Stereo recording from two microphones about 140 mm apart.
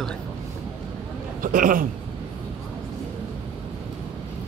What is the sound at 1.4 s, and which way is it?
Speech, 75° right (ahead or behind).